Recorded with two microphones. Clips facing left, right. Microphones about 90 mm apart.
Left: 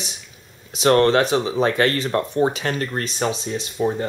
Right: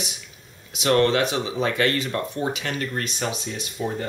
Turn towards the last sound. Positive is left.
turn(degrees=30)  # may be behind; listen again after turning